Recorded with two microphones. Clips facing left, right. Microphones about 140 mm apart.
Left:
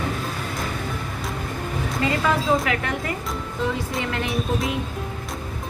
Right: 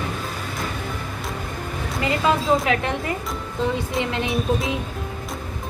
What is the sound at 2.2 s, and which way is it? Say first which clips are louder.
Speech: right 4 dB; 20° right (ahead or behind).